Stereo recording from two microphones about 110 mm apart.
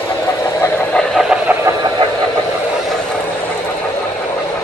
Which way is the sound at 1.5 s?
20° right (ahead or behind).